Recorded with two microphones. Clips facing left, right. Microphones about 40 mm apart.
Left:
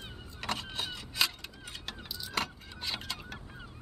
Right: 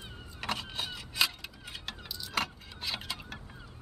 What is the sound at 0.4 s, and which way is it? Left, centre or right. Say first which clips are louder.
Vehicle: even; centre.